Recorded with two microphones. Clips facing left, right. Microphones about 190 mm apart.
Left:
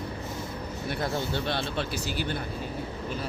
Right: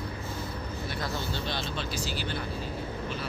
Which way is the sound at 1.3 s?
60° left (ahead or behind).